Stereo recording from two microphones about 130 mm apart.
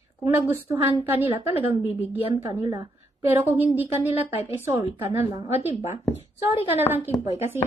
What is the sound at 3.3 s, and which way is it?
Speech, 15° right (ahead or behind).